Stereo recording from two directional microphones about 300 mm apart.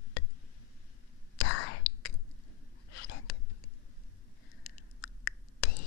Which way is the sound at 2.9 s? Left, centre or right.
Left.